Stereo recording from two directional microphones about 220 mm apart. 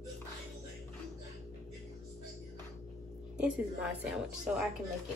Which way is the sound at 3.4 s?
Centre (ahead or behind).